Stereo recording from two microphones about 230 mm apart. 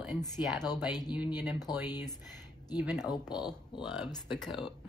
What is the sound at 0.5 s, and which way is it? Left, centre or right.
Speech, centre.